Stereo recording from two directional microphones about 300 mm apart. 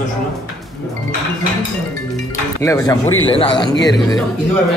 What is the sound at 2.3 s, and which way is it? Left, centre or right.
Speech, centre.